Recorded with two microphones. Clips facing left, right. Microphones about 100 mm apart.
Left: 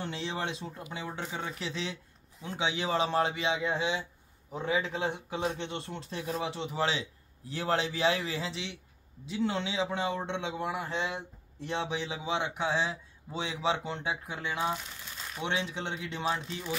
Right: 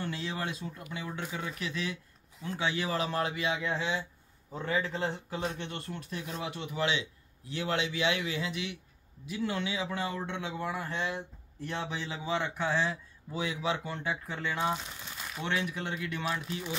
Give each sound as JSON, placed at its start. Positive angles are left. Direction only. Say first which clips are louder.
{"t": 0.0, "sound": "a man's voice", "louder": "left 1 dB", "side_deg": 25}